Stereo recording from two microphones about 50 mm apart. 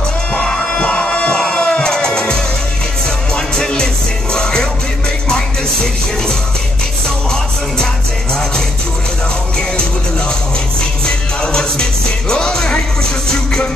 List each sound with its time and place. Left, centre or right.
0.3 s music: centre
12.3 s music: centre